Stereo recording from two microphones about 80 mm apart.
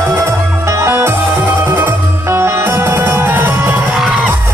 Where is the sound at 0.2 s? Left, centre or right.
Right.